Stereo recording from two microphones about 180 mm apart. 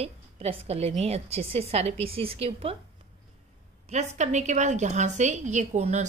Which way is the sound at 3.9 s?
40° right (ahead or behind).